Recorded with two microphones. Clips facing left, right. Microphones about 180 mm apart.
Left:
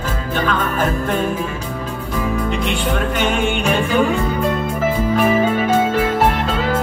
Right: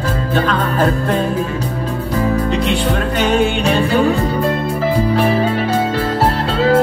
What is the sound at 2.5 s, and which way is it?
Music, 35° right (ahead or behind).